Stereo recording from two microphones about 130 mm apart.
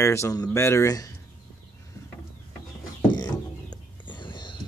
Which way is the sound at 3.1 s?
35° left (ahead or behind).